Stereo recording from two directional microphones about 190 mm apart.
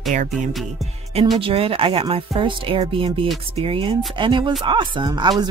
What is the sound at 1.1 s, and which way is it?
Speech, 30° right (ahead or behind).